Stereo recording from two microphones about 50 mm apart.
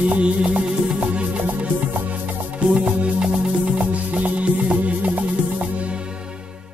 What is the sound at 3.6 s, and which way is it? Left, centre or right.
Music, right.